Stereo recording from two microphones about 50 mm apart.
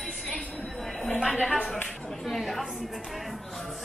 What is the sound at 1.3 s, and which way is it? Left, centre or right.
Clapping, centre.